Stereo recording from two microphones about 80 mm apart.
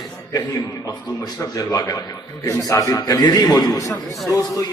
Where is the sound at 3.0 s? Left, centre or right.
Left.